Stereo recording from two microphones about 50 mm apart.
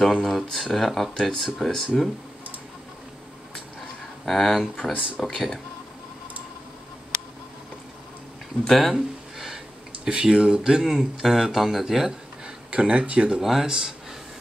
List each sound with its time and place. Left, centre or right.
0.0 s speech: centre
4.3 s speech: centre
8.6 s speech: centre
10.0 s speech: centre
13.4 s speech: centre